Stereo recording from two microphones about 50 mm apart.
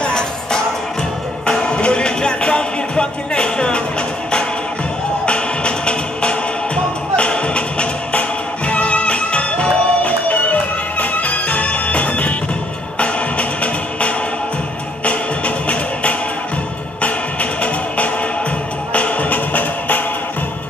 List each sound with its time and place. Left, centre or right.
0.0 s music: centre
5.2 s music: left